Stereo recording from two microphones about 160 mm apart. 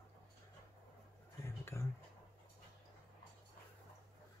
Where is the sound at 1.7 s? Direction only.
20° left (ahead or behind).